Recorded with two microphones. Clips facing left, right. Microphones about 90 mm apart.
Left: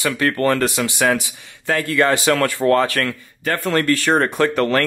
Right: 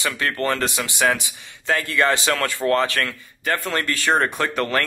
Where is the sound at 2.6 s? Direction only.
40° left (ahead or behind).